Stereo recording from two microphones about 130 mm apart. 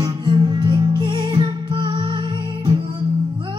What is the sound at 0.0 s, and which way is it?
Music, 35° right (ahead or behind).